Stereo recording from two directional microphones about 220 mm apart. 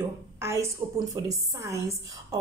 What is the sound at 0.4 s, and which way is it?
A woman's voice, 10° right (ahead or behind).